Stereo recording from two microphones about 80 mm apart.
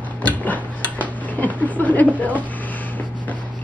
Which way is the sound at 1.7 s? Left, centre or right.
Centre.